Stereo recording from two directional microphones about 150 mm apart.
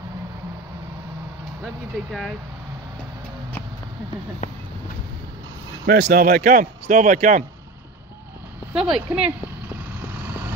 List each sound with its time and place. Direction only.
4.4 s speech: 55° left (ahead or behind)
5.9 s speech: 90° right; by 7.4 s 60° right (ahead or behind)
8.7 s speech: 5° right (ahead or behind)
10.1 s vehicle: 15° right (ahead or behind)